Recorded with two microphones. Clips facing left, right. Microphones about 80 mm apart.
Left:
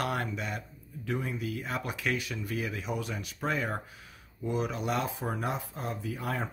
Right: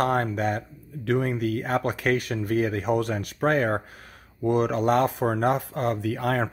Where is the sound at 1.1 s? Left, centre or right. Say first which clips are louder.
Right 9 dB; right.